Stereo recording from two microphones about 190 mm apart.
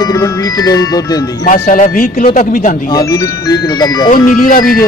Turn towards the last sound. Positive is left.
turn(degrees=50)  # may be behind; listen again after turning